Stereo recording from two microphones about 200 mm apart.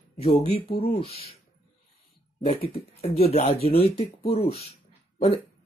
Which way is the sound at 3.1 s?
30° left (ahead or behind).